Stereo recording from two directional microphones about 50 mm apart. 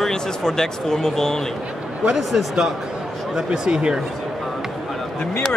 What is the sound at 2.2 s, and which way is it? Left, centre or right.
Speech, centre.